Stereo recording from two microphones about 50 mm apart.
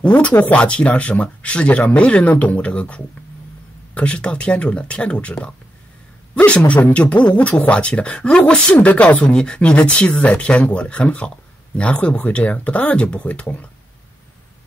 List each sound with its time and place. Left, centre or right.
0.0 s a man's voice: left
6.3 s a man's voice: left
9.3 s a man's voice: centre